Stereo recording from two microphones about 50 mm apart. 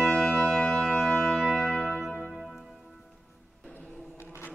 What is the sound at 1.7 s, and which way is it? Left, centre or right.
Music, centre.